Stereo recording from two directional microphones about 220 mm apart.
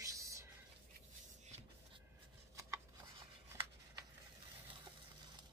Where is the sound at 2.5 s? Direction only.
15° right (ahead or behind).